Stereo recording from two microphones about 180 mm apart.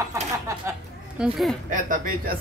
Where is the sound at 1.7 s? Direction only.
50° right (ahead or behind).